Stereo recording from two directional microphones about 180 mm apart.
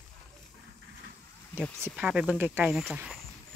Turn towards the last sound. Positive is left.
turn(degrees=0)  # may be behind; listen again after turning